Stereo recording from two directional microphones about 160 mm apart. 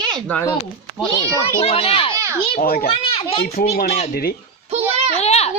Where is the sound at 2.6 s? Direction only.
70° left (ahead or behind).